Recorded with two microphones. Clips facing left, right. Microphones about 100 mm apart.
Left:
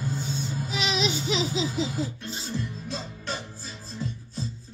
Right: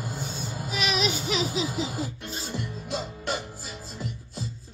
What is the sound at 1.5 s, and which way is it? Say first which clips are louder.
Laughter: left 1 dB; 25° left (ahead or behind).